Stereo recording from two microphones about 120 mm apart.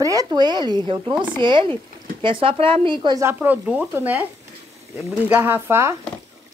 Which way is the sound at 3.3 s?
10° right (ahead or behind).